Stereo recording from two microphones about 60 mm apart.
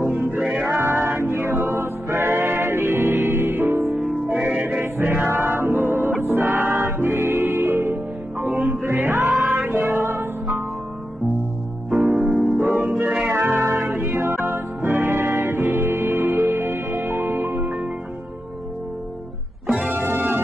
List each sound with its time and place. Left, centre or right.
0.0 s music: right
0.4 s music: centre
0.8 s music: right
3.8 s music: centre
5.0 s music: right
8.4 s music: centre
8.8 s music: right
11.9 s music: centre
12.8 s music: right
19.9 s music: right